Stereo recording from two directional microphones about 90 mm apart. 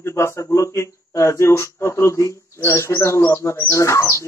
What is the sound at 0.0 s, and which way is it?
Speech, 30° left (ahead or behind).